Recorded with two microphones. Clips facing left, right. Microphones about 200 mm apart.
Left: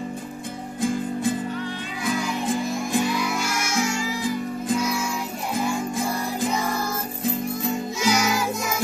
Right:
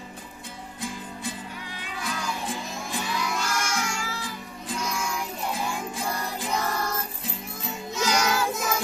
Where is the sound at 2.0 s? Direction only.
10° left (ahead or behind).